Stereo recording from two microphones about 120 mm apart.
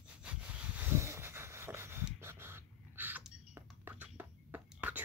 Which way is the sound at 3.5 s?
15° right (ahead or behind).